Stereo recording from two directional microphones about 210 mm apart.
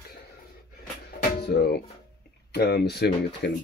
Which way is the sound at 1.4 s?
50° left (ahead or behind).